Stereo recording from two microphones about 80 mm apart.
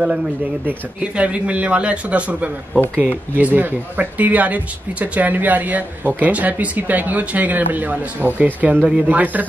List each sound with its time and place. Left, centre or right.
0.7 s speech: centre
2.8 s speech: centre
3.3 s speech: right